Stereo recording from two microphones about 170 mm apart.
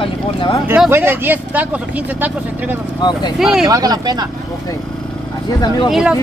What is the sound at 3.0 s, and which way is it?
Speech, 25° left (ahead or behind).